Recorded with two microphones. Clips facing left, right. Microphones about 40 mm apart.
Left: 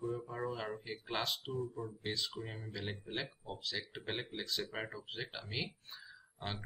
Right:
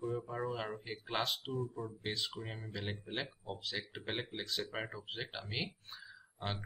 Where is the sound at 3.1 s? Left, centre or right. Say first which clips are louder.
Right 1 dB; centre.